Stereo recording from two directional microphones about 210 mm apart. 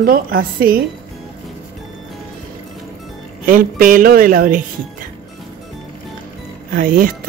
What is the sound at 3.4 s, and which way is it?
Speech, 40° right (ahead or behind).